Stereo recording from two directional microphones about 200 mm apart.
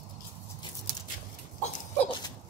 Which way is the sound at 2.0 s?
20° left (ahead or behind).